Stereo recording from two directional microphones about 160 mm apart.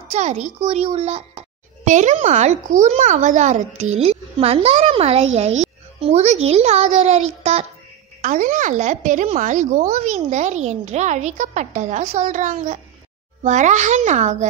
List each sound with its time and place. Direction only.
0.1 s a child's voice: 45° right (ahead or behind)